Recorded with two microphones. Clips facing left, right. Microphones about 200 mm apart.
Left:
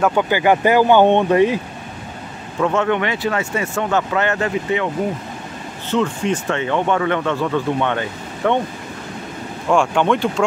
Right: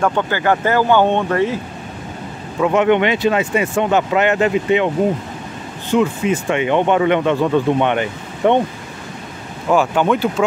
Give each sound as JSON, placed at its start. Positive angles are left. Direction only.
{"t": 0.0, "sound": "speech", "side_deg": 10}
{"t": 2.6, "sound": "speech", "side_deg": -15}
{"t": 5.9, "sound": "speech", "side_deg": -10}
{"t": 9.7, "sound": "speech", "side_deg": -5}